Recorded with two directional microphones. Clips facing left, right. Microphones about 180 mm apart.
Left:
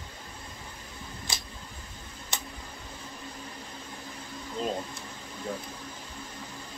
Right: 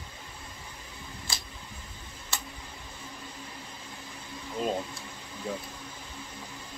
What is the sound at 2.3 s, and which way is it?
Tick-tock, 20° left (ahead or behind).